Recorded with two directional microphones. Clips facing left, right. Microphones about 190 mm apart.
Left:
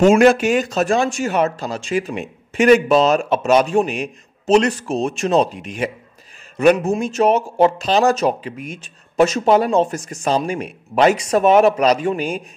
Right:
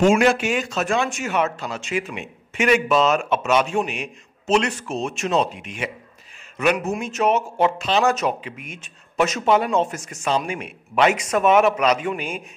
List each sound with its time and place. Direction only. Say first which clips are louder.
0.0 s speech: left 5 dB; 40° left (ahead or behind)